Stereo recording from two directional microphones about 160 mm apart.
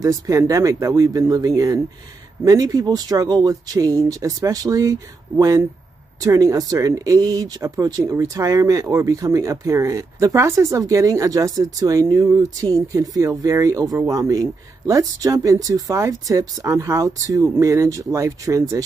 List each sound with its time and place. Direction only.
0.0 s speech: 20° right (ahead or behind)